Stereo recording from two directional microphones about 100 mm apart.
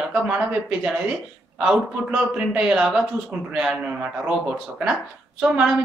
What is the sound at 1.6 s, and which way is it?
A man's voice, 10° right (ahead or behind).